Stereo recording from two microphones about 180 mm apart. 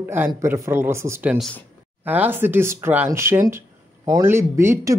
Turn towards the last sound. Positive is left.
turn(degrees=-15)  # may be behind; listen again after turning